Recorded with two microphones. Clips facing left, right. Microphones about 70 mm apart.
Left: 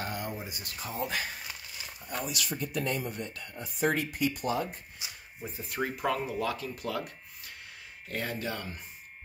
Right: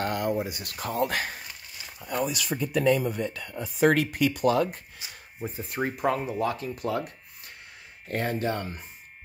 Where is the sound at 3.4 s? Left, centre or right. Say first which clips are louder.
Right 7 dB; right.